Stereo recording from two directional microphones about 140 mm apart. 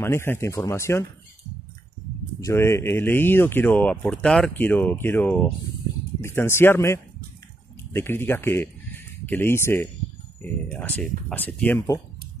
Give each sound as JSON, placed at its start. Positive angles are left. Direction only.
{"t": 0.0, "sound": "speech", "side_deg": 15}
{"t": 2.4, "sound": "speech", "side_deg": 20}